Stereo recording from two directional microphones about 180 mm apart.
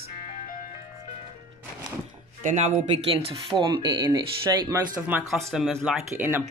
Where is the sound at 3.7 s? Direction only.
25° right (ahead or behind).